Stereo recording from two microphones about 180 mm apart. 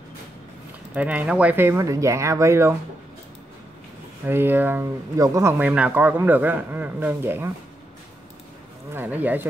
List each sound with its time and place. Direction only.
0.9 s speech: 10° right (ahead or behind)
4.3 s speech: 10° right (ahead or behind)
8.9 s speech: 10° right (ahead or behind)